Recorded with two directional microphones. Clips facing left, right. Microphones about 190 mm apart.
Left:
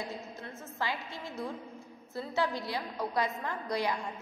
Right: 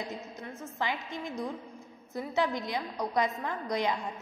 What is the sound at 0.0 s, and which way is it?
A woman's voice, 20° right (ahead or behind).